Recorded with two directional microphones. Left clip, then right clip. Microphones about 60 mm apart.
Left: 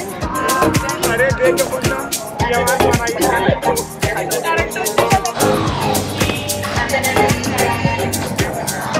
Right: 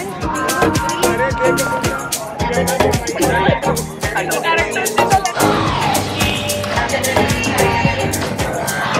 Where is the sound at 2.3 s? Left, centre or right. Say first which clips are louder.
Left 2 dB; centre.